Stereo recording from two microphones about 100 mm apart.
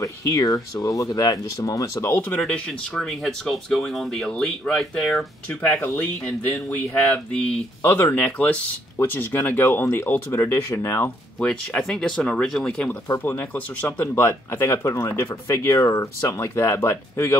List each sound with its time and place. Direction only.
0.0 s speech: 30° left (ahead or behind)
2.4 s speech: 10° left (ahead or behind)
5.5 s speech: 15° left (ahead or behind)
7.8 s speech: 25° left (ahead or behind)
11.3 s speech: 10° left (ahead or behind)
13.2 s speech: 20° left (ahead or behind)